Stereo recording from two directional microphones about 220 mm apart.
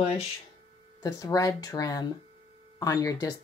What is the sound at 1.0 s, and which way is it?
Speech, 15° left (ahead or behind).